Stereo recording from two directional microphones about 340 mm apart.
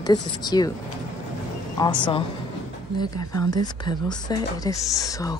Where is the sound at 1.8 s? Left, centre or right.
Centre.